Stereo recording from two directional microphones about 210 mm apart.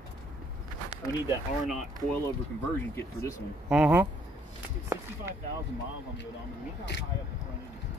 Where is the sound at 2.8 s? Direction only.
10° left (ahead or behind).